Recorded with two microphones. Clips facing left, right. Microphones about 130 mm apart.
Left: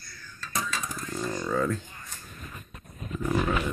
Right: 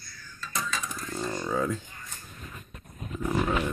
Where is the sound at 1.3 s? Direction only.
10° right (ahead or behind).